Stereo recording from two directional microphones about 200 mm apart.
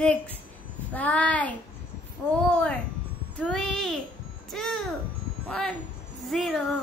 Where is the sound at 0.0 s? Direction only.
5° left (ahead or behind).